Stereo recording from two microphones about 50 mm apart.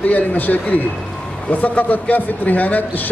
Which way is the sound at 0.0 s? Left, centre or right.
Left.